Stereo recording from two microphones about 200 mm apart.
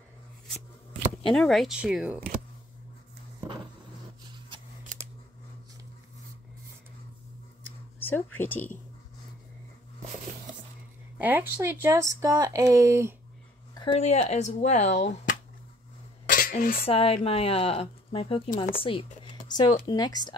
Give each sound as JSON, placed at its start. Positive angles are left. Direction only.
{"t": 1.2, "sound": "speech", "side_deg": 0}
{"t": 8.0, "sound": "speech", "side_deg": 10}
{"t": 11.1, "sound": "speech", "side_deg": -10}
{"t": 13.7, "sound": "speech", "side_deg": 25}
{"t": 16.3, "sound": "dishes", "side_deg": 45}
{"t": 16.8, "sound": "speech", "side_deg": 30}